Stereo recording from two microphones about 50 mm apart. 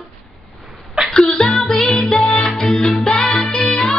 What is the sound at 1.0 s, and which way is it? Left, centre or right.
Music, centre.